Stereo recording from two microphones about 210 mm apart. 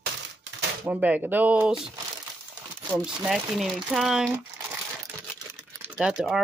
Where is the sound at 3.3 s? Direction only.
Centre (ahead or behind).